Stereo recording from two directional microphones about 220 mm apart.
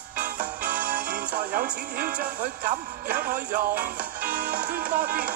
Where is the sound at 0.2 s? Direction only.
40° right (ahead or behind).